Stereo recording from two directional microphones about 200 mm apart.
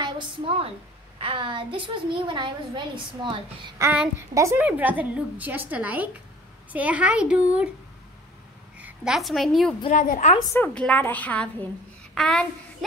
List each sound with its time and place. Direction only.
0.0 s a sound: 25° right (ahead or behind)
1.2 s a woman's voice: 25° right (ahead or behind); by 7.7 s 5° right (ahead or behind)
8.7 s a woman's voice: 5° right (ahead or behind)
9.9 s a woman's voice: 40° left (ahead or behind)
10.5 s a woman's voice: 5° left (ahead or behind)